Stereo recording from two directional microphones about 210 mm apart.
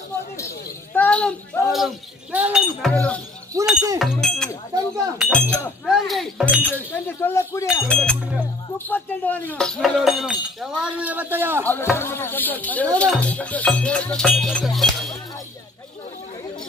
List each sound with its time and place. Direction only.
0.9 s speech: 5° left (ahead or behind)
3.5 s speech: 15° right (ahead or behind)
4.0 s speech: centre (ahead or behind)
7.1 s speech: 10° left (ahead or behind); by 11.6 s 10° right (ahead or behind)
11.6 s speech: 10° left (ahead or behind)